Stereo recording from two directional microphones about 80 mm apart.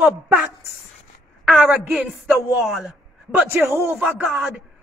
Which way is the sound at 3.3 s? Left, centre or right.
Right.